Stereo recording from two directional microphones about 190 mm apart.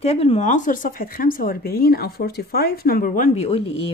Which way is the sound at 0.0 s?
35° left (ahead or behind).